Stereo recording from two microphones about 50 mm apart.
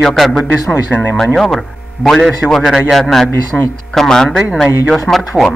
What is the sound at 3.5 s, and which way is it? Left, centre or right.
A man's voice, centre.